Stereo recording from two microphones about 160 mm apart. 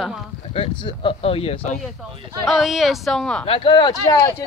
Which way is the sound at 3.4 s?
35° left (ahead or behind).